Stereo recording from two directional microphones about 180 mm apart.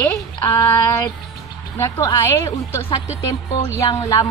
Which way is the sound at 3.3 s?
15° left (ahead or behind).